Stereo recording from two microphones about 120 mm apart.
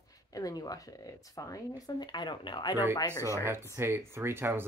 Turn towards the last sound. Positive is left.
turn(degrees=-20)  # may be behind; listen again after turning